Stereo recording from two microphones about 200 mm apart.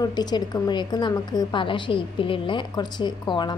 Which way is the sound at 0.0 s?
20° left (ahead or behind).